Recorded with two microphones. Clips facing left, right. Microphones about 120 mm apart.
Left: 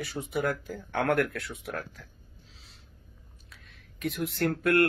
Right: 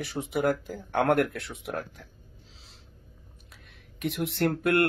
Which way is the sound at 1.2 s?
Centre (ahead or behind).